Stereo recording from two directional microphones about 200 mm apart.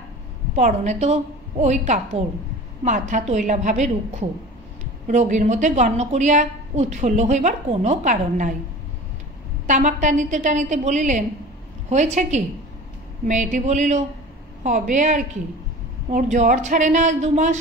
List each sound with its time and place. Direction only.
0.6 s a woman's voice: 35° right (ahead or behind)
9.7 s a woman's voice: 40° right (ahead or behind)